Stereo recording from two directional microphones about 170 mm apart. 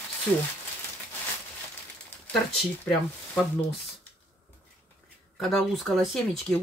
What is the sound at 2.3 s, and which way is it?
Speech, 5° left (ahead or behind).